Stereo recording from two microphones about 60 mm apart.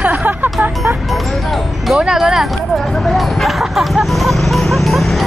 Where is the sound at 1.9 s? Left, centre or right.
Centre.